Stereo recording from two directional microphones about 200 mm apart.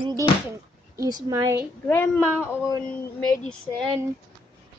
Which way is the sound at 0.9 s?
15° right (ahead or behind).